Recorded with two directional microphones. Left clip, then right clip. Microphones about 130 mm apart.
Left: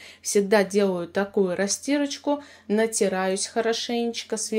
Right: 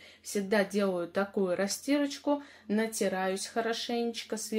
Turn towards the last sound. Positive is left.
turn(degrees=35)  # may be behind; listen again after turning